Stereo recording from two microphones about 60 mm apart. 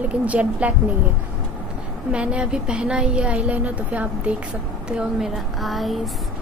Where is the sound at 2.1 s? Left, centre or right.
Centre.